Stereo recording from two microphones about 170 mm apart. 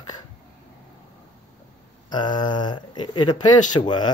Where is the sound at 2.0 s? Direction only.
25° left (ahead or behind).